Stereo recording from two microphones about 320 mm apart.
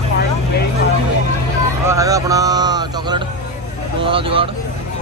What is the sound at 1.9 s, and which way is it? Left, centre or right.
Speech, centre.